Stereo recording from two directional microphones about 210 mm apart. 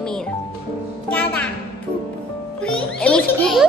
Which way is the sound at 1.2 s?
5° left (ahead or behind).